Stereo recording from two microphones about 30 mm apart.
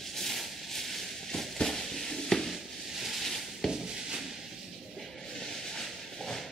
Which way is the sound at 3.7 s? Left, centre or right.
Centre.